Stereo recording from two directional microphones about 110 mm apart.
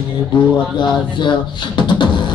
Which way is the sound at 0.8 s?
45° left (ahead or behind).